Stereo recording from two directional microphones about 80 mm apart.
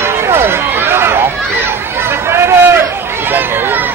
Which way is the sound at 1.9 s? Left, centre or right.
Right.